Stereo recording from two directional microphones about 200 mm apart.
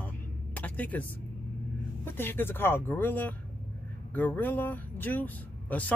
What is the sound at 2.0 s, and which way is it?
Speech, 10° left (ahead or behind).